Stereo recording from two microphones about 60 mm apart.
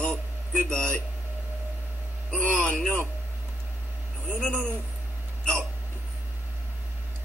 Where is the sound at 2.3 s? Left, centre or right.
Left.